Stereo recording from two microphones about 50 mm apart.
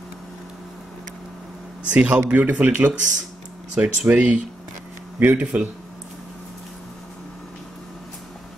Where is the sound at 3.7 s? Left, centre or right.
Right.